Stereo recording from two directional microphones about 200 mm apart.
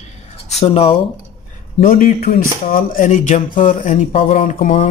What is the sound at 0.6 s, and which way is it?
Speech, 30° left (ahead or behind).